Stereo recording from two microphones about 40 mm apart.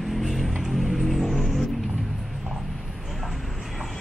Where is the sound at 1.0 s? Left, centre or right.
Centre.